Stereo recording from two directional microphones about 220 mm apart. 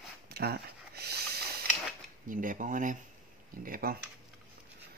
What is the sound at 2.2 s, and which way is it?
Speech, 35° right (ahead or behind).